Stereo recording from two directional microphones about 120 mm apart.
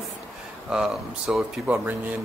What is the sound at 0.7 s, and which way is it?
Speech, 5° right (ahead or behind).